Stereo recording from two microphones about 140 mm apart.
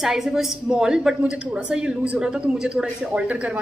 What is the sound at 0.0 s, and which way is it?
A woman's voice, centre (ahead or behind).